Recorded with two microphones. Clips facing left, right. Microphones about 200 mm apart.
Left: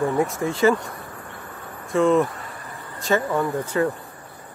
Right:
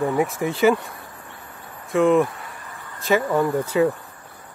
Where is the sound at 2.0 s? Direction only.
15° right (ahead or behind).